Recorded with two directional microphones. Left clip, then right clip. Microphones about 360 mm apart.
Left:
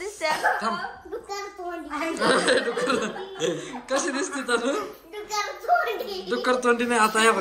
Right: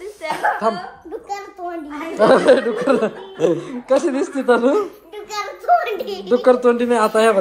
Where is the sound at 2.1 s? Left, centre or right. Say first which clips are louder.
Right 10 dB; centre.